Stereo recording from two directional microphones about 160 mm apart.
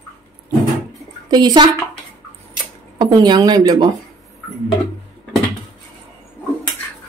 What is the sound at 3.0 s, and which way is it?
Speech, 25° right (ahead or behind).